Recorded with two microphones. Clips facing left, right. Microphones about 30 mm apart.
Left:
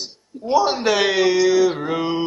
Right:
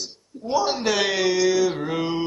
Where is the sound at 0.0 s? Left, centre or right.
Centre.